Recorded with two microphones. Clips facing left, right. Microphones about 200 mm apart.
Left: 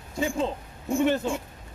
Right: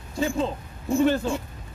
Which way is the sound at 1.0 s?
15° left (ahead or behind).